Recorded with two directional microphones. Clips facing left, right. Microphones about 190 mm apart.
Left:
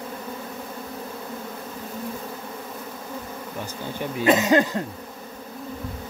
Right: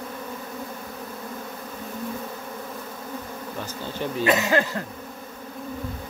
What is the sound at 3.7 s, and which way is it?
Speech, 15° left (ahead or behind).